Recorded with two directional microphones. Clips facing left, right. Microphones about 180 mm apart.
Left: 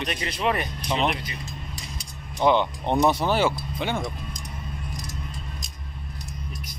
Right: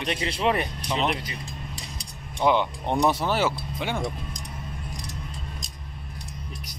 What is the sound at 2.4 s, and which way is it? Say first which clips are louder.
Speech: left 2 dB; 5° right (ahead or behind).